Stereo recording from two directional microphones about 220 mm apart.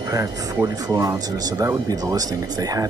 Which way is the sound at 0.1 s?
15° right (ahead or behind).